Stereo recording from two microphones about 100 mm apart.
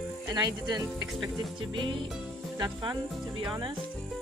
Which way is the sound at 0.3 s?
40° right (ahead or behind).